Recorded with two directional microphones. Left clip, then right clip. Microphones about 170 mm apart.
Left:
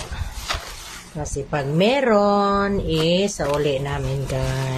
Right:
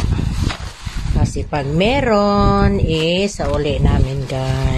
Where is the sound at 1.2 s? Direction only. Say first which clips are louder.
Right 2 dB; 35° right (ahead or behind).